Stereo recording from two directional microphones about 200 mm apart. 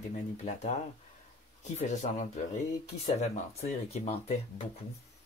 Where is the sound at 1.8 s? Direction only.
35° left (ahead or behind).